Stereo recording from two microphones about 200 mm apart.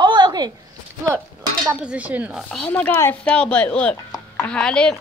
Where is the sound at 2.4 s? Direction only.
5° left (ahead or behind).